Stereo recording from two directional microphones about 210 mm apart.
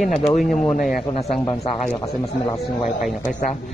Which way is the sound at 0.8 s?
35° left (ahead or behind).